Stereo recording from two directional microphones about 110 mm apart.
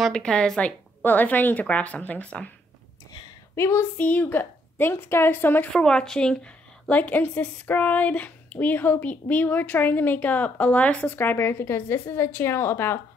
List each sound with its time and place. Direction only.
0.0 s a woman's voice: 10° left (ahead or behind)
3.5 s a woman's voice: 25° left (ahead or behind)
5.7 s a woman's voice: 5° left (ahead or behind); by 13.0 s 20° left (ahead or behind)